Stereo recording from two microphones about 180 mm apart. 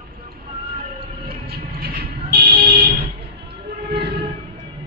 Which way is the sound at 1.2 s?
60° right (ahead or behind).